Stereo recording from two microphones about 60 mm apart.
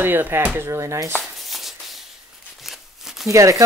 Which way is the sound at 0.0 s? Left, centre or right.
Right.